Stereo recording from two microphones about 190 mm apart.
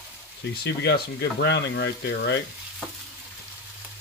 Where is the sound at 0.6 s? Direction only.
60° left (ahead or behind).